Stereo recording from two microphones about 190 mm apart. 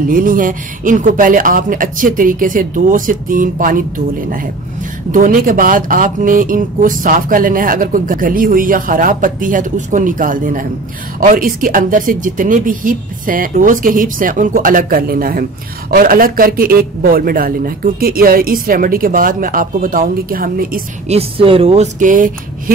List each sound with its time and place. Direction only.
0.1 s speech: 45° right (ahead or behind)
5.1 s speech: 45° right (ahead or behind)
21.1 s speech: 30° right (ahead or behind)